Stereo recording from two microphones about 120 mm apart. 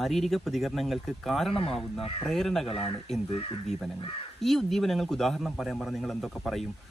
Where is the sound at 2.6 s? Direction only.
50° left (ahead or behind).